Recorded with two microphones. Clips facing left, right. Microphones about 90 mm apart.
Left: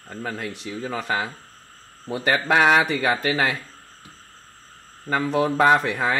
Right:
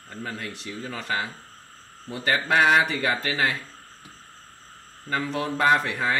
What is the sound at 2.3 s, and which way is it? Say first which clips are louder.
Speech: left 2 dB; 80° left.